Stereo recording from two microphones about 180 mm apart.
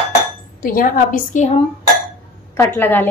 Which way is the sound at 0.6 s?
50° left (ahead or behind).